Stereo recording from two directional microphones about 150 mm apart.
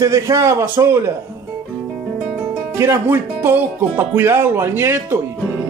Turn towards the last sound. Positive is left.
turn(degrees=-15)  # may be behind; listen again after turning